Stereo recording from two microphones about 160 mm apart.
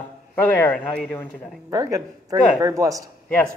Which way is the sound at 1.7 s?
20° right (ahead or behind).